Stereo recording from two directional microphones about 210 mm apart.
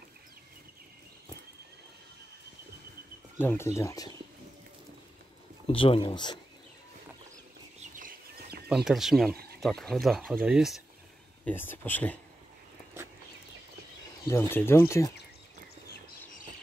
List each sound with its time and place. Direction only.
3.3 s speech: 10° left (ahead or behind)
5.7 s speech: 25° left (ahead or behind)
7.9 s a sound: 45° right (ahead or behind)
8.6 s speech: centre (ahead or behind)
11.4 s speech: 10° left (ahead or behind)
14.2 s speech: 10° left (ahead or behind)